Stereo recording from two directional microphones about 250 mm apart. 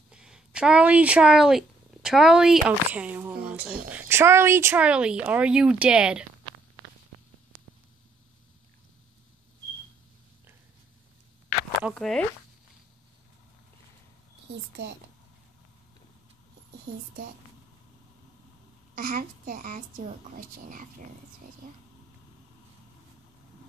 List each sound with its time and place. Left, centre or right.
0.1 s speech: centre
11.8 s speech: centre
18.9 s a child's voice: right